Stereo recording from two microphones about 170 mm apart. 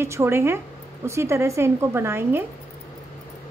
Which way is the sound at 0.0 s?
15° right (ahead or behind).